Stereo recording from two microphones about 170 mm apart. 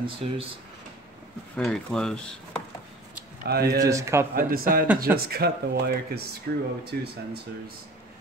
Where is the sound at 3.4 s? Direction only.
70° right (ahead or behind).